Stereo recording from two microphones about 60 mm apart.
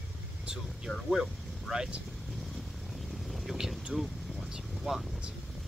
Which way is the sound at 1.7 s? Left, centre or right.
Centre.